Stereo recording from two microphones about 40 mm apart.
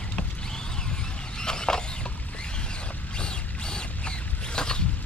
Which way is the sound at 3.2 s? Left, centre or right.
Left.